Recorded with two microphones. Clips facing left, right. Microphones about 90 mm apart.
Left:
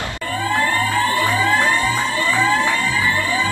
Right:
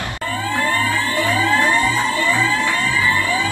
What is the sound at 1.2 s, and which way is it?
Emergency vehicle, 20° left (ahead or behind).